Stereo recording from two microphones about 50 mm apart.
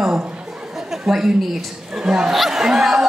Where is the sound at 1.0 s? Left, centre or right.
Centre.